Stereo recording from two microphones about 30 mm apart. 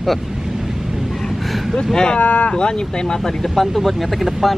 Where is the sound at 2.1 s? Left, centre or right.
Left.